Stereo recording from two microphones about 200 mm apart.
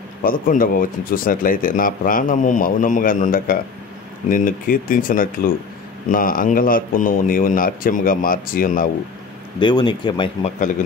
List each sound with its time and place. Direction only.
0.2 s speech: 45° left (ahead or behind)
9.6 s speech: 25° left (ahead or behind)